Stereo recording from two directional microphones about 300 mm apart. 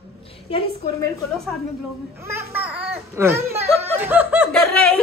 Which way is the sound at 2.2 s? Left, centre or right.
Centre.